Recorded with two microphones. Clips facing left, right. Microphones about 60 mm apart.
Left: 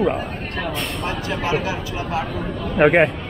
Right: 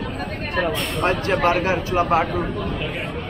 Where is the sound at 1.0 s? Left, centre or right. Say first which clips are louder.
Right 8 dB; right.